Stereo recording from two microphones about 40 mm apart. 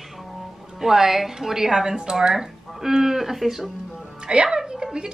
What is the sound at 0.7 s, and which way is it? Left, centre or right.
Speech, centre.